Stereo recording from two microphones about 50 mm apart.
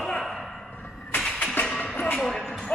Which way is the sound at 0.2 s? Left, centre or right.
Centre.